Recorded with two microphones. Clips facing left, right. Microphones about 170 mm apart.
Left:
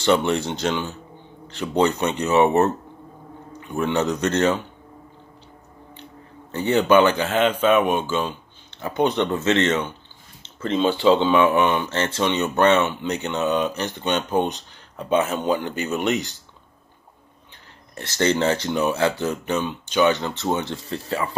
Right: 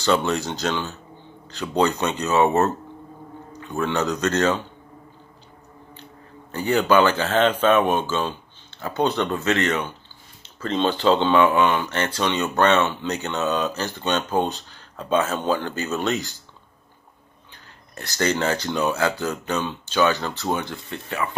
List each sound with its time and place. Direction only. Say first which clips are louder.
0.0 s speech: left 2 dB; 20° left (ahead or behind)
6.5 s speech: left 2 dB; 20° left (ahead or behind)
10.4 s a sound: left 2 dB; 20° left (ahead or behind)
10.8 s speech: left 2 dB; 10° left (ahead or behind)
17.9 s speech: left 2 dB; 25° left (ahead or behind)